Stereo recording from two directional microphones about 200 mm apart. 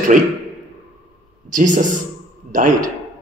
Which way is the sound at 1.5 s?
40° right (ahead or behind).